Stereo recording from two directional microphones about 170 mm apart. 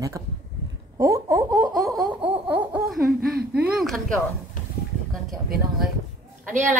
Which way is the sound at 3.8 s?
Centre (ahead or behind).